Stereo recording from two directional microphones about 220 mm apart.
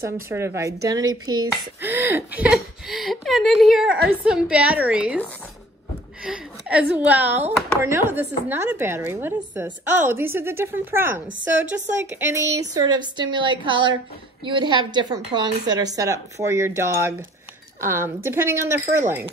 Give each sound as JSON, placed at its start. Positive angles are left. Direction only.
{"t": 0.0, "sound": "a woman's voice", "side_deg": -10}
{"t": 6.2, "sound": "a woman's voice", "side_deg": -5}